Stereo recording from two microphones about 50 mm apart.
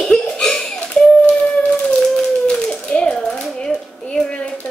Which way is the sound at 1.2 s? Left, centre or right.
Left.